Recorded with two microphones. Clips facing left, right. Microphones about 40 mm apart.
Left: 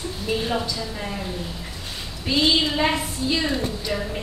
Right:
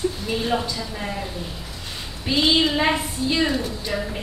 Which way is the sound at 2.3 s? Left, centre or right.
Centre.